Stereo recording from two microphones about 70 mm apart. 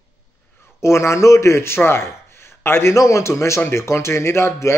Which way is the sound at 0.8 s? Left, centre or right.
Left.